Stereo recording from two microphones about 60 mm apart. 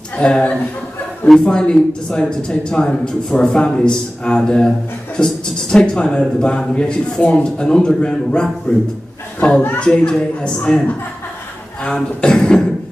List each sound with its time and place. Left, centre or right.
0.1 s a man's voice: left
11.8 s a woman's voice: centre